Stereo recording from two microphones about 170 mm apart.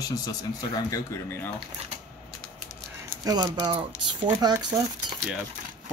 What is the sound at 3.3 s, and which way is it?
Speech, 25° right (ahead or behind).